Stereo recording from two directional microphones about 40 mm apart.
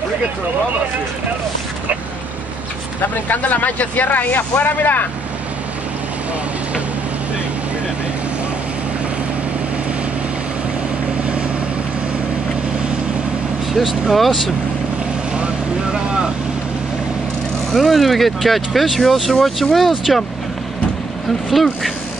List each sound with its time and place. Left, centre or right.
3.0 s speech: left
4.6 s speech: left
13.7 s speech: centre
15.3 s vehicle: right
17.7 s speech: centre
21.5 s speech: centre